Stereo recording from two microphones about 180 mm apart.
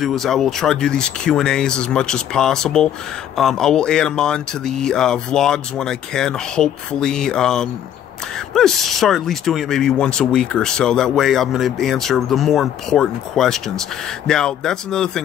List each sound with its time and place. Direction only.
0.0 s speech: centre (ahead or behind)